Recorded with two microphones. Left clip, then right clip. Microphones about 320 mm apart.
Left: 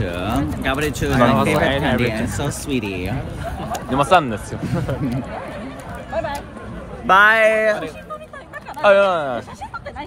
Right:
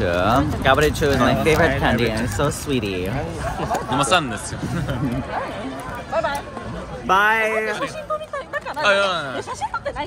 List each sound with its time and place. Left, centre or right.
0.0 s speech: centre
3.9 s speech: centre
7.1 s speech: centre
8.8 s a man's voice: centre